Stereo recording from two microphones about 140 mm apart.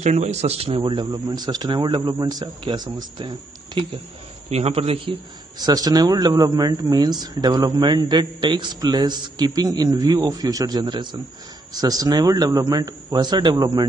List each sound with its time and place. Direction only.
0.0 s speech: 50° right (ahead or behind); by 3.8 s 35° right (ahead or behind)
4.5 s a man's voice: 50° right (ahead or behind); by 13.8 s 30° right (ahead or behind)